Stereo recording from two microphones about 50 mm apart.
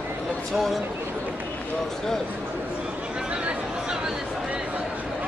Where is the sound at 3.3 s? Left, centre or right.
Centre.